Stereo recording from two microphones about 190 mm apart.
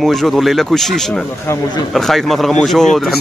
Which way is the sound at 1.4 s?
15° left (ahead or behind).